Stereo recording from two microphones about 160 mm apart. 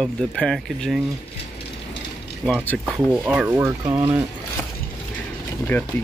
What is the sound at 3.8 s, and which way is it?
Speech, 20° right (ahead or behind).